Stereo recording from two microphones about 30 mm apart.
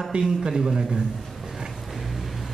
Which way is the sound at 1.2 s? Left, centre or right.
Centre.